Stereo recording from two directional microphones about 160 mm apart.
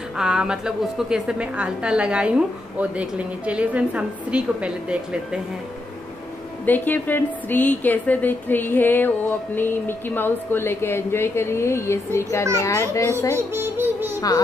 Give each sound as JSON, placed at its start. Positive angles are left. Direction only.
{"t": 0.1, "sound": "a woman's voice", "side_deg": -5}
{"t": 6.6, "sound": "a woman's voice", "side_deg": 10}
{"t": 13.3, "sound": "music", "side_deg": -15}